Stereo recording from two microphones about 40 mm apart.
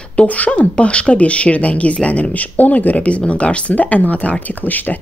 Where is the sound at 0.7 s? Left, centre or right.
Left.